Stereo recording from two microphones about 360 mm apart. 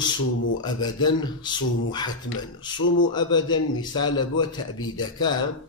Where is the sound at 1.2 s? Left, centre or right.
Centre.